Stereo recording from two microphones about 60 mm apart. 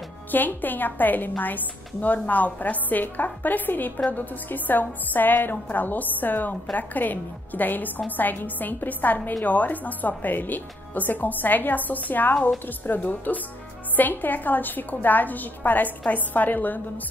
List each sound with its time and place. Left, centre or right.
0.3 s a woman's voice: left